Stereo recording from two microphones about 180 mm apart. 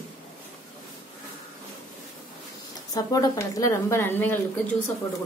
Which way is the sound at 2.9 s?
20° left (ahead or behind).